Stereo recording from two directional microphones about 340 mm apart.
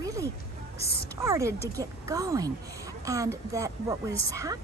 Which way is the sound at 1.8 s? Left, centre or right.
Centre.